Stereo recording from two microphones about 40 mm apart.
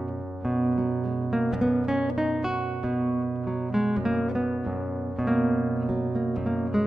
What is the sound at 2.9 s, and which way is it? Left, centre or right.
Music, centre.